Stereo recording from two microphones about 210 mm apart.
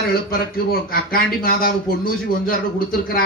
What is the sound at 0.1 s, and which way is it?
Speech, 45° left (ahead or behind).